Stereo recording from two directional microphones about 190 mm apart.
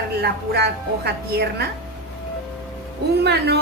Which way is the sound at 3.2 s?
60° right (ahead or behind).